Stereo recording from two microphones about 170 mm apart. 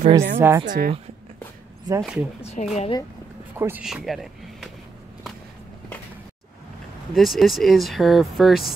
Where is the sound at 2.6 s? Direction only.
45° left (ahead or behind).